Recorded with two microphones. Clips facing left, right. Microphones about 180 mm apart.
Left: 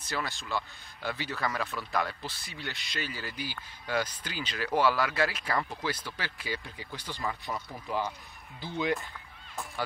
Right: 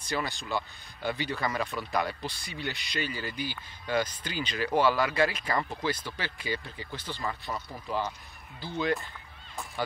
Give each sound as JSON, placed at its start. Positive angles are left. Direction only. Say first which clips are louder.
{"t": 0.2, "sound": "speech", "louder": "right 2 dB", "side_deg": 0}